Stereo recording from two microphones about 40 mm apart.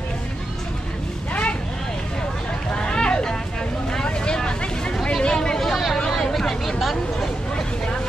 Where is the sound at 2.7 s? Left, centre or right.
Left.